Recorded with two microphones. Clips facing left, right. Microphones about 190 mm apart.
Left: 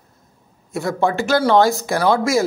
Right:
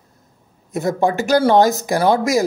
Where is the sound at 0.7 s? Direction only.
20° right (ahead or behind).